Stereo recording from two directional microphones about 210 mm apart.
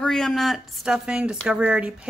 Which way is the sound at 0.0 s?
Centre (ahead or behind).